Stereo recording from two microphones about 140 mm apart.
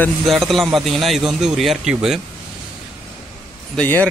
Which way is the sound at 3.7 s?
10° left (ahead or behind).